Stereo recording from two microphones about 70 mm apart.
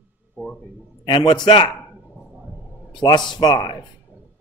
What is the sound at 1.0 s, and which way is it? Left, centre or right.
Mantra, left.